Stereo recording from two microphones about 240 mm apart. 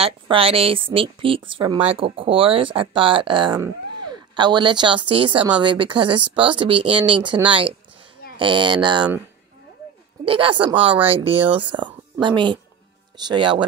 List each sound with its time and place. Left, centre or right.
0.0 s speech: right
10.2 s a woman's voice: right